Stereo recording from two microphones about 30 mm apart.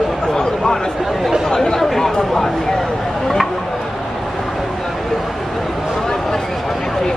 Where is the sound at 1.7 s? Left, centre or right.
Centre.